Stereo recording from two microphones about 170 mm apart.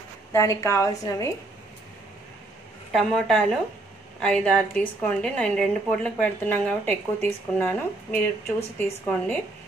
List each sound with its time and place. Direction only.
0.3 s a woman's voice: 15° left (ahead or behind)
2.9 s a woman's voice: centre (ahead or behind)